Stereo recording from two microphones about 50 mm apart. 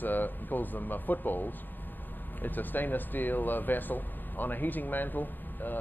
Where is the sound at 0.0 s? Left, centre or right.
Left.